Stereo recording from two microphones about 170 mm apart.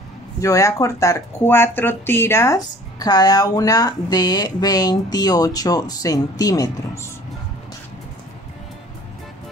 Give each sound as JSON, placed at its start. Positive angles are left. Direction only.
{"t": 0.4, "sound": "speech", "side_deg": 20}